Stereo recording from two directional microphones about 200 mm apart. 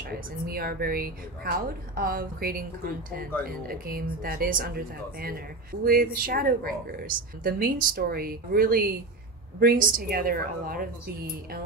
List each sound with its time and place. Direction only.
0.0 s a woman's voice: 50° right (ahead or behind)